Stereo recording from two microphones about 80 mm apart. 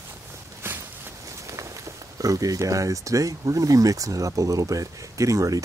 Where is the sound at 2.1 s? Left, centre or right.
Right.